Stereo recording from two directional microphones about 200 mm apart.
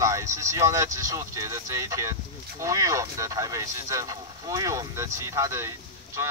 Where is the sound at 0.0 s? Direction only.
15° right (ahead or behind).